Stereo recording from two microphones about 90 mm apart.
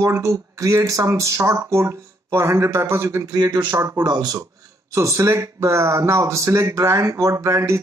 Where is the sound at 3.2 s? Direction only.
50° right (ahead or behind).